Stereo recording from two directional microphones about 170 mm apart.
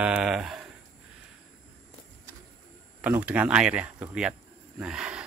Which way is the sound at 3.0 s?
10° right (ahead or behind).